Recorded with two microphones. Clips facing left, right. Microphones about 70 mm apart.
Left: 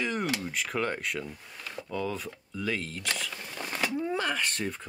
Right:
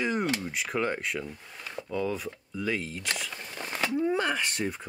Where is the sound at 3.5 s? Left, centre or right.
Centre.